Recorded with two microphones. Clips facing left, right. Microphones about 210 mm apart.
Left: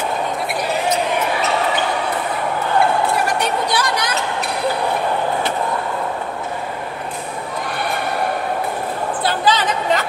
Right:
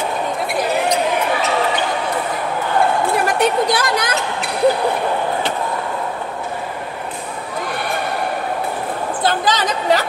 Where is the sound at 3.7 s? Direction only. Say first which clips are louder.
Right 1 dB; 55° right (ahead or behind).